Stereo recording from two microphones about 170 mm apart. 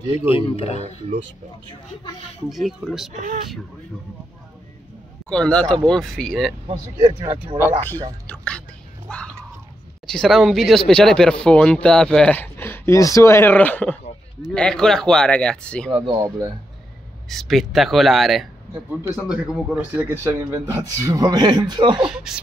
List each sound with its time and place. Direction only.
0.4 s speech: 35° left (ahead or behind)
2.5 s speech: centre (ahead or behind)
3.1 s speech: 45° right (ahead or behind)
5.3 s speech: 5° left (ahead or behind)
7.0 s speech: 30° right (ahead or behind)
8.3 s whispering: 5° left (ahead or behind)
9.1 s a sound: 5° left (ahead or behind)
10.0 s speech: 5° left (ahead or behind)
17.3 s speech: centre (ahead or behind); by 22.1 s 25° right (ahead or behind)